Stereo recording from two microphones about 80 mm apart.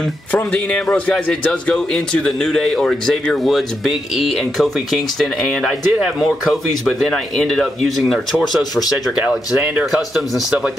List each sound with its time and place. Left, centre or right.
0.3 s a man's voice: centre
9.1 s speech: centre
10.1 s speech: centre